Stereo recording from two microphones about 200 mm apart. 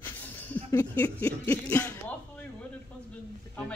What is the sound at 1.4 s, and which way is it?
Music, 5° left (ahead or behind).